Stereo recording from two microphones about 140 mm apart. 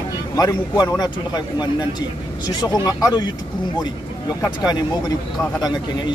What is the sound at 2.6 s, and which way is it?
Speech, 30° left (ahead or behind).